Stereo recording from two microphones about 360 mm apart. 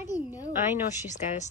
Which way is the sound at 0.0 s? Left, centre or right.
Centre.